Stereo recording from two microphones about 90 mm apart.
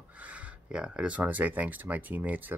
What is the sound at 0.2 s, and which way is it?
Speech, 15° right (ahead or behind).